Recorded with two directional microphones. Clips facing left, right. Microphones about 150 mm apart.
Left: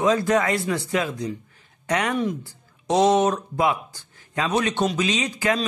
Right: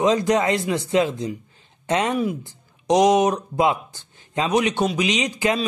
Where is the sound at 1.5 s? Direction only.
25° right (ahead or behind).